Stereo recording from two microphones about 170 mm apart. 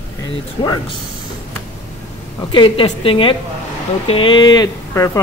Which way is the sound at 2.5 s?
30° left (ahead or behind).